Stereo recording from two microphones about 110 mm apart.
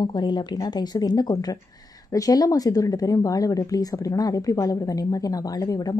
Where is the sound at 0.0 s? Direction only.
40° left (ahead or behind).